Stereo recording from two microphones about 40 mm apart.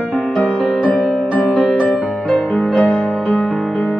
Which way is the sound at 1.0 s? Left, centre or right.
Right.